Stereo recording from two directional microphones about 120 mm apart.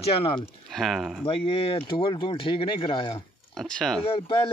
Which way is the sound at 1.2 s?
50° left (ahead or behind).